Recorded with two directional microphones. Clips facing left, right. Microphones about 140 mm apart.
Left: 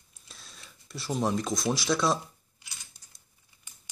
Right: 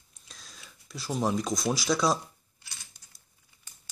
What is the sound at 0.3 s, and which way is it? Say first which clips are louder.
Speech: even; centre (ahead or behind).